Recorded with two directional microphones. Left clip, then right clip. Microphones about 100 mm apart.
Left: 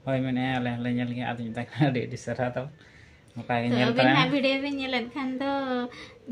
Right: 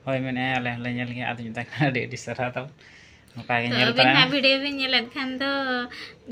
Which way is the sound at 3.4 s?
15° right (ahead or behind).